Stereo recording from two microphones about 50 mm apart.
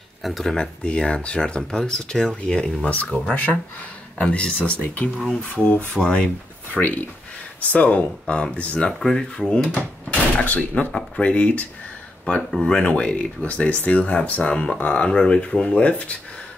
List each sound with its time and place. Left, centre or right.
0.2 s speech: centre
0.6 s speech: left
3.1 s speech: left
4.2 s speech: centre
6.8 s speech: left; by 9.6 s centre
9.8 s speech: left
12.8 s speech: left